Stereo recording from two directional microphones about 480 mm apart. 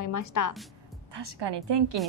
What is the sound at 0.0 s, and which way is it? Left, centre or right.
Speech, left.